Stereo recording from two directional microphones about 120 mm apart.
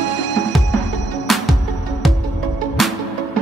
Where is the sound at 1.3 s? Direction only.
Centre (ahead or behind).